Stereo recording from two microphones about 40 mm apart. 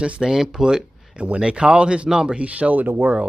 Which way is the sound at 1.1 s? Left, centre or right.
Right.